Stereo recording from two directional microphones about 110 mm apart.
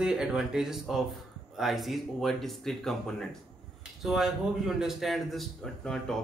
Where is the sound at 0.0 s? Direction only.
5° right (ahead or behind).